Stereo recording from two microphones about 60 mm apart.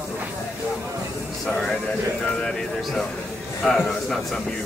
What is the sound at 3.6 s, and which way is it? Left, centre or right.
Speech, centre.